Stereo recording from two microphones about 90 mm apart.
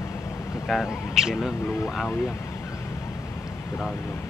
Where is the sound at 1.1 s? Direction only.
5° right (ahead or behind).